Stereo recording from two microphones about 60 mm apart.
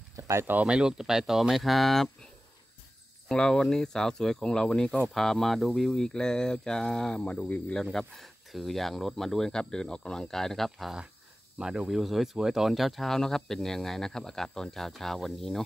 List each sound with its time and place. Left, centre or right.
0.1 s a sound: right
0.7 s speech: centre
3.3 s speech: centre
7.7 s speech: centre
11.5 s speech: centre